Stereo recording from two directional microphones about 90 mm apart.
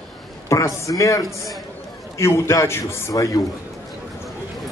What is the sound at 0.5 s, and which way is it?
A man's voice, 35° left (ahead or behind).